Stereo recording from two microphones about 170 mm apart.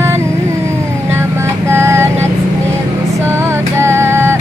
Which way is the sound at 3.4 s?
15° right (ahead or behind).